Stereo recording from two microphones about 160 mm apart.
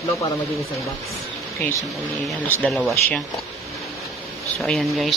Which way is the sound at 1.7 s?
Centre (ahead or behind).